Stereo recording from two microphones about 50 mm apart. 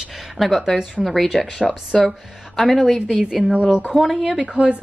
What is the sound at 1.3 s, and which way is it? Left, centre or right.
Speech, centre.